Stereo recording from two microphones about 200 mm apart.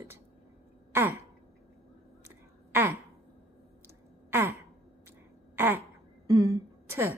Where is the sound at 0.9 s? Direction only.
10° right (ahead or behind).